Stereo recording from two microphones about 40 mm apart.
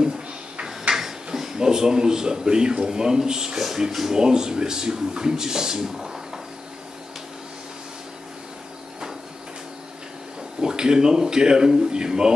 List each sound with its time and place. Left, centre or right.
0.9 s speech: centre
3.5 s speech: centre
10.6 s speech: centre